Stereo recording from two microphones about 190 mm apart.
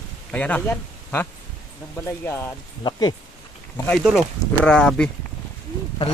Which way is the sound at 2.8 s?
20° left (ahead or behind).